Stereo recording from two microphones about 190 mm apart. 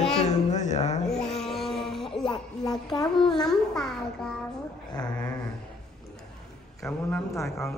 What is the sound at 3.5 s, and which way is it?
Speech, centre (ahead or behind).